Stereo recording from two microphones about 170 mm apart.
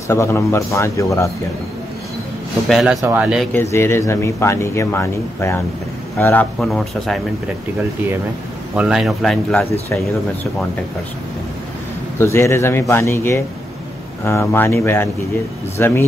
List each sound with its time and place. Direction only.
0.1 s a man's voice: 15° left (ahead or behind)
2.7 s a man's voice: centre (ahead or behind)
3.7 s a man's voice: 15° left (ahead or behind)
6.6 s speech: centre (ahead or behind)
8.7 s speech: 5° right (ahead or behind)
12.2 s a man's voice: 15° left (ahead or behind)